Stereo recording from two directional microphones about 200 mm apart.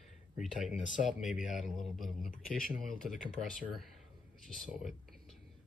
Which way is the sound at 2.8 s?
Centre (ahead or behind).